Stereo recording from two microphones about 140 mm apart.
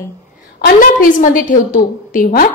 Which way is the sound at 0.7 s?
70° left (ahead or behind).